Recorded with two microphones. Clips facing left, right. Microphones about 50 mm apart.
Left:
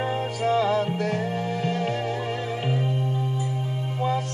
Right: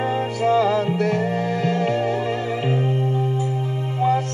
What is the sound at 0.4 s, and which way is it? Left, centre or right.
Music, right.